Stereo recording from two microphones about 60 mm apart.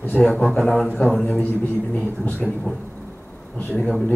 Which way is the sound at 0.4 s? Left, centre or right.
Centre.